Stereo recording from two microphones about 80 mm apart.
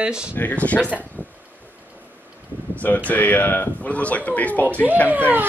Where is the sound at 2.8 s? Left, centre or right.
Centre.